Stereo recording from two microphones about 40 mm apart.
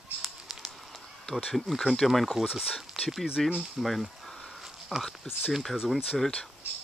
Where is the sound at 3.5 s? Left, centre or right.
Centre.